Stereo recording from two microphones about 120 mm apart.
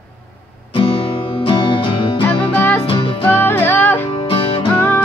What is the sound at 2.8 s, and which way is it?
Music, 45° left (ahead or behind).